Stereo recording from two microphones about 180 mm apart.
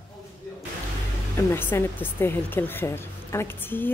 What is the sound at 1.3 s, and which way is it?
Speech, 15° left (ahead or behind).